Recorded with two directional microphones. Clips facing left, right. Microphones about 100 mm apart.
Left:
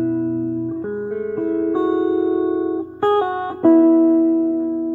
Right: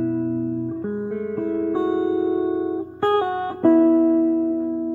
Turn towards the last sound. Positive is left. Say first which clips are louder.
# left 3 dB
turn(degrees=10)  # may be behind; listen again after turning